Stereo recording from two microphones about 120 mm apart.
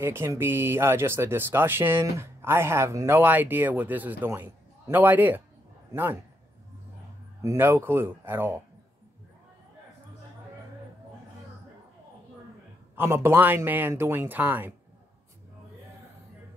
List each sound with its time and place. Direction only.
0.0 s speech: 20° right (ahead or behind)
7.4 s speech: 20° right (ahead or behind)
12.9 s a man's voice: 20° right (ahead or behind)